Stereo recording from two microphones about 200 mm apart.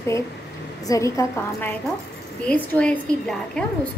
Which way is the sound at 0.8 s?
15° left (ahead or behind).